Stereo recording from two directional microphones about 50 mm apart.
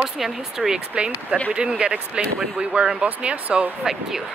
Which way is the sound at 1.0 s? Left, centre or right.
Right.